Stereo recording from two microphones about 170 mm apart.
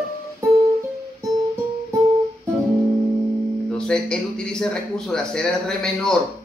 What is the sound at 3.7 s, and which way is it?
A man's voice, 5° left (ahead or behind).